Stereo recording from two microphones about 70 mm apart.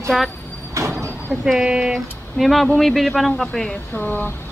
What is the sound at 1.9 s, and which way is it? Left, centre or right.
Speech, centre.